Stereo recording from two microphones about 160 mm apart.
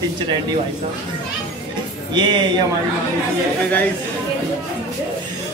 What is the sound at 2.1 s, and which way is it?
Speech, 30° right (ahead or behind).